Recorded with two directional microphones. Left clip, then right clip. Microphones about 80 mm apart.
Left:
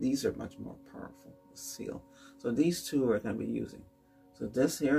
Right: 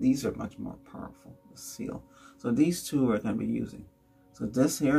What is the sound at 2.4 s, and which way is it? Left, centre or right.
Speech, left.